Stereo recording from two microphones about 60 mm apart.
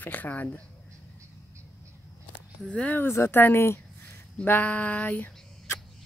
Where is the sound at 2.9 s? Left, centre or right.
Left.